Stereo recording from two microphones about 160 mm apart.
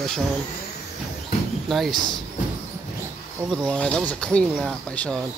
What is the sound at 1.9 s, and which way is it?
Speech, 60° right (ahead or behind).